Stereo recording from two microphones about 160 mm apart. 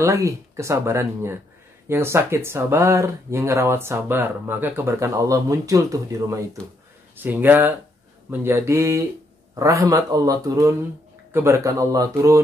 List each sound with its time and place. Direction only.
0.0 s speech: 20° right (ahead or behind)